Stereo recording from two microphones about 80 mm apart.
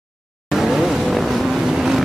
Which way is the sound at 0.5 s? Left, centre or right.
Centre.